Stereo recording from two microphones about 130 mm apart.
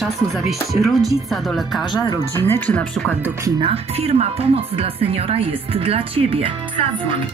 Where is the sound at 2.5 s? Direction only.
10° left (ahead or behind).